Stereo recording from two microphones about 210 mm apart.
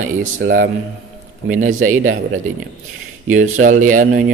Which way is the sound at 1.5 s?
40° right (ahead or behind).